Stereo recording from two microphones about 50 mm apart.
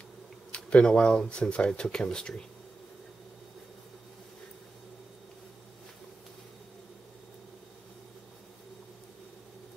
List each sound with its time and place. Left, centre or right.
0.5 s speech: left